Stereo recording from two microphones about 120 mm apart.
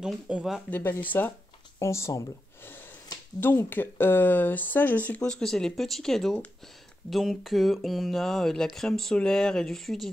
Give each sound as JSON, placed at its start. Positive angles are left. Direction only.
{"t": 0.0, "sound": "speech", "side_deg": -5}
{"t": 0.7, "sound": "speech", "side_deg": 15}